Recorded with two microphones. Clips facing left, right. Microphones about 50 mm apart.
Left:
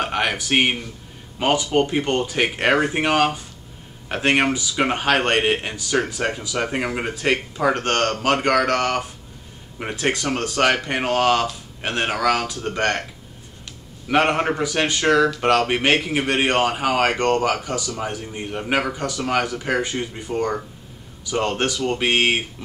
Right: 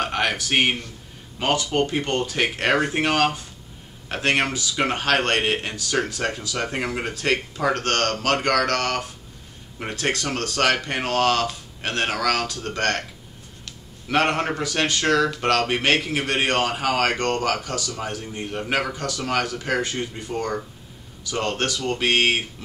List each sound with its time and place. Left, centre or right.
0.0 s a man's voice: centre
14.0 s speech: centre